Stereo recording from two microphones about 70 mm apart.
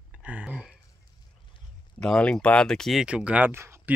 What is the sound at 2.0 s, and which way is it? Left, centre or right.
Speech, centre.